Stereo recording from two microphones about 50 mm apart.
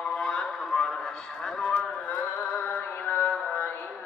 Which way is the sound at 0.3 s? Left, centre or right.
Centre.